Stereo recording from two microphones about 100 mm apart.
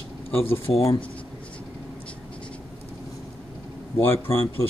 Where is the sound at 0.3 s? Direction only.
70° left (ahead or behind).